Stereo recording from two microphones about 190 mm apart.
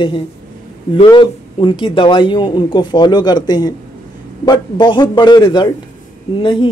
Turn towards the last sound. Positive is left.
turn(degrees=25)  # may be behind; listen again after turning